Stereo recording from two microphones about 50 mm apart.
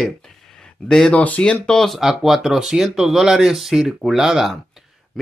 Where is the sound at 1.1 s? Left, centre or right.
Left.